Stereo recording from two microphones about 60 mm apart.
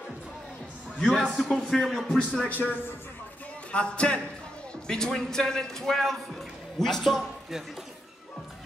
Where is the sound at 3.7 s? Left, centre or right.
Centre.